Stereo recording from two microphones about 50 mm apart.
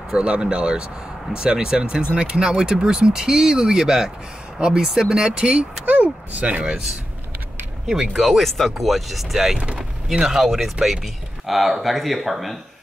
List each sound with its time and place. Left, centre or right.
0.1 s speech: centre
7.8 s speech: centre
8.2 s speech: centre